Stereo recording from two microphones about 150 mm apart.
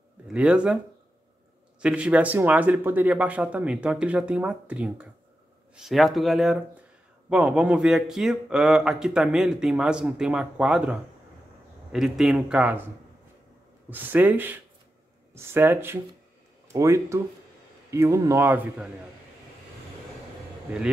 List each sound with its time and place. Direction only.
0.3 s speech: 5° right (ahead or behind)
1.8 s speech: 5° right (ahead or behind)